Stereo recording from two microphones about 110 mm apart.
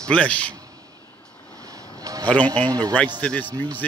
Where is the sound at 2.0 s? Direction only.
30° right (ahead or behind).